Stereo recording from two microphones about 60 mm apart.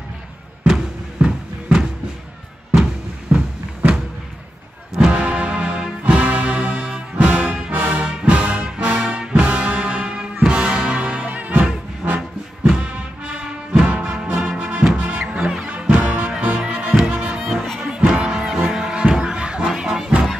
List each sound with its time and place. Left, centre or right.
0.7 s music: centre
3.3 s a sound: right
4.9 s music: centre
11.2 s music: right; by 15.7 s centre
15.7 s music: right
17.4 s music: centre